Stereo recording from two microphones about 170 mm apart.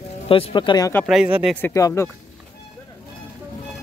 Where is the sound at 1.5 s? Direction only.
15° left (ahead or behind).